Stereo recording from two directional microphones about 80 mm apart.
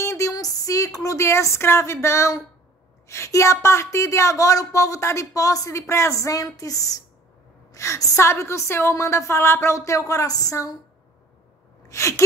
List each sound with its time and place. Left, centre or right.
0.0 s a woman's voice: left
11.9 s a woman's voice: left